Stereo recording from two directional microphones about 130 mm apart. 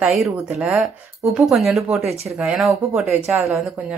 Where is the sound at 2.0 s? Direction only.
55° right (ahead or behind).